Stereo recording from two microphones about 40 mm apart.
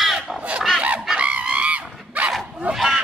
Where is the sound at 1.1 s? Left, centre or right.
Right.